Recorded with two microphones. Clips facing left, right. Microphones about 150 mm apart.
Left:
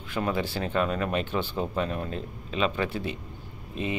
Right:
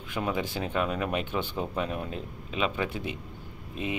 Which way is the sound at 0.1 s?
10° right (ahead or behind).